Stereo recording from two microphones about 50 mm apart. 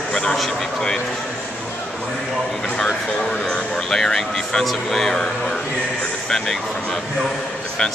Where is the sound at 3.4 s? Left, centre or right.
Centre.